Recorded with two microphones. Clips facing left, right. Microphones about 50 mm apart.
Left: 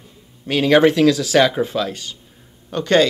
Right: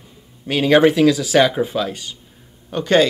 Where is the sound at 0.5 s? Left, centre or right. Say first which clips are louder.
Even; centre.